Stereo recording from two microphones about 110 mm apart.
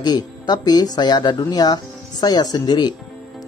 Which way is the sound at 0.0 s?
40° left (ahead or behind).